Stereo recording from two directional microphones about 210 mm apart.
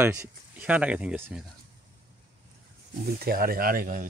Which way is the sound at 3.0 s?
45° right (ahead or behind).